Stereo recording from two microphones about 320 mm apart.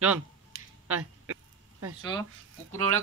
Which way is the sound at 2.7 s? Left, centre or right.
Right.